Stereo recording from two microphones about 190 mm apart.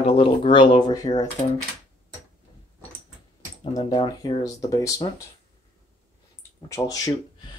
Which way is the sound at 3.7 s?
20° left (ahead or behind).